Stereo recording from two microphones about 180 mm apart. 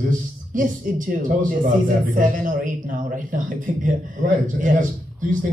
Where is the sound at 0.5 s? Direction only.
45° right (ahead or behind).